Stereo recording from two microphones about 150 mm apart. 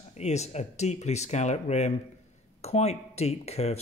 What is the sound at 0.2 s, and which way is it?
Speech, 50° left (ahead or behind).